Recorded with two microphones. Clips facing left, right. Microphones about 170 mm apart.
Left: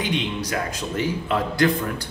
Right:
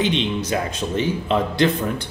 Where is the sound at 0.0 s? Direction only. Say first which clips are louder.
Right 4 dB; 25° right (ahead or behind).